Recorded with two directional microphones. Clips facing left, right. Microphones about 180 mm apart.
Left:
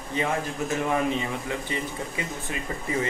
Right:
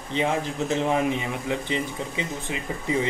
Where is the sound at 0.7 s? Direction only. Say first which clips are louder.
Right 2 dB; 20° right (ahead or behind).